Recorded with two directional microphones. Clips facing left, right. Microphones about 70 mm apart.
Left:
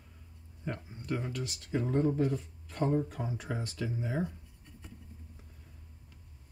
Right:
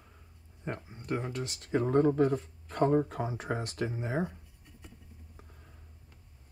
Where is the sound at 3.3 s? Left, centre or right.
Right.